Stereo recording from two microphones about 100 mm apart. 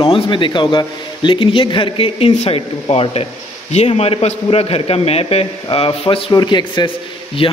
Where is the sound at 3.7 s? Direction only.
90° left; by 6.2 s 70° left (ahead or behind).